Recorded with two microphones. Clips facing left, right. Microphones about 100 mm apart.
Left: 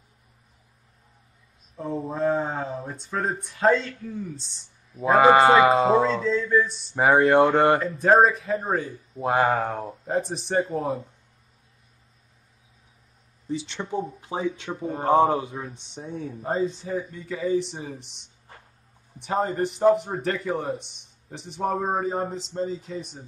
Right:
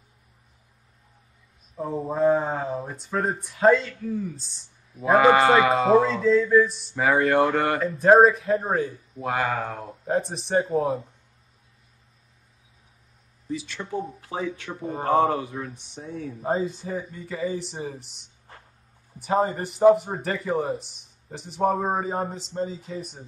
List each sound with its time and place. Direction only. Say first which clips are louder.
1.8 s speech: right 3 dB; 5° right (ahead or behind)
5.0 s speech: left 1 dB; 25° left (ahead or behind)
6.2 s speech: right 4 dB; centre (ahead or behind)
7.0 s speech: left 3 dB; 25° left (ahead or behind)
7.8 s speech: right 3 dB; centre (ahead or behind)
9.2 s speech: left 4 dB; 30° left (ahead or behind)
10.0 s speech: right 2 dB; centre (ahead or behind)
13.5 s speech: left 1 dB; 25° left (ahead or behind)
16.3 s speech: even; 5° right (ahead or behind)